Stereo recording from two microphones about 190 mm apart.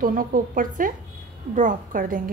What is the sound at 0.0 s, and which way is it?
A woman's voice, 45° right (ahead or behind).